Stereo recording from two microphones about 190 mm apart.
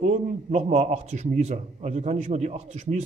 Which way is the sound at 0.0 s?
35° right (ahead or behind).